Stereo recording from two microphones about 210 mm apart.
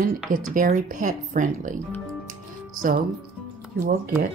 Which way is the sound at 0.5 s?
40° right (ahead or behind).